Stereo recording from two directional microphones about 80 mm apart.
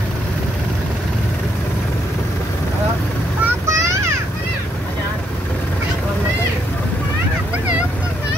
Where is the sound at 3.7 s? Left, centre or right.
Right.